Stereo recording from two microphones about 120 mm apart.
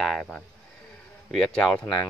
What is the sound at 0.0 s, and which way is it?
Speech, 5° left (ahead or behind).